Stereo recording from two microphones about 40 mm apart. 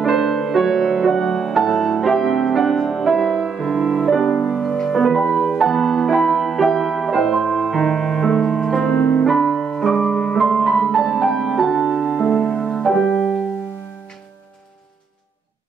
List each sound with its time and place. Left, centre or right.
0.0 s music: centre
4.1 s music: centre
7.1 s music: centre
8.9 s piano: left
9.2 s music: centre
9.8 s piano: centre
10.9 s music: centre